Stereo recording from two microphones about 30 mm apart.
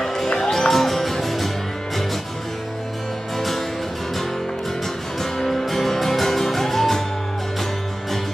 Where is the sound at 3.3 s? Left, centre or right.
Centre.